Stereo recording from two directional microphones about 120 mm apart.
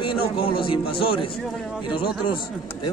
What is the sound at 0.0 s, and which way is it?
A man's voice, 45° left (ahead or behind).